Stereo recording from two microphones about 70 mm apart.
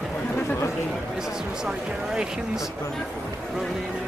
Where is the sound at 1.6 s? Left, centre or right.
Centre.